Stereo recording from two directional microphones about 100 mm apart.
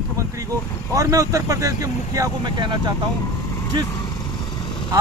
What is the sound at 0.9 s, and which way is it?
Speech, 35° right (ahead or behind).